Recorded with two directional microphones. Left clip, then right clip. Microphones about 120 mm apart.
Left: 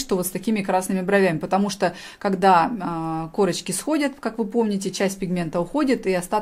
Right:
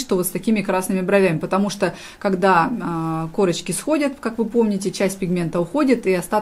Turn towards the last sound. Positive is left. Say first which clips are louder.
# right 3 dB
turn(degrees=20)  # may be behind; listen again after turning